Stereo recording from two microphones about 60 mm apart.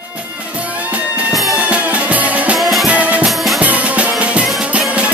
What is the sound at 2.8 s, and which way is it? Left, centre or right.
Music, right.